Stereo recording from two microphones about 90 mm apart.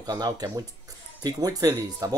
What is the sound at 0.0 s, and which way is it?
Speech, 45° right (ahead or behind).